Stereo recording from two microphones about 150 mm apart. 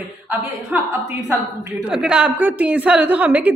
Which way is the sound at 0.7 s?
5° right (ahead or behind).